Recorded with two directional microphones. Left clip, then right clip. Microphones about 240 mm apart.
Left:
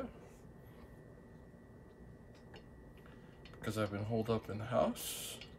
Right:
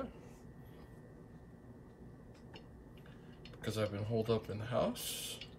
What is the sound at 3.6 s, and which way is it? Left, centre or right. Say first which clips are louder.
Speech: right 1 dB; centre.